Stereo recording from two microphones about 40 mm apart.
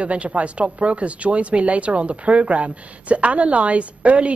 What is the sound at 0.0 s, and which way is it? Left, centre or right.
A woman's voice, right.